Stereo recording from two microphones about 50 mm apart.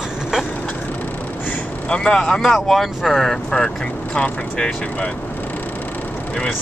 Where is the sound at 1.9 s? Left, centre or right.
Centre.